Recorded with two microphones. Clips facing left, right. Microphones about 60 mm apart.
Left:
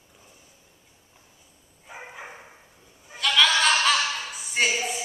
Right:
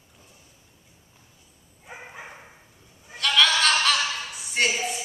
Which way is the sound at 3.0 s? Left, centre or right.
Centre.